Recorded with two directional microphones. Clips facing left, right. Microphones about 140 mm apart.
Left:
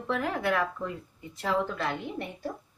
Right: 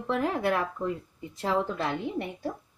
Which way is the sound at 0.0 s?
25° right (ahead or behind).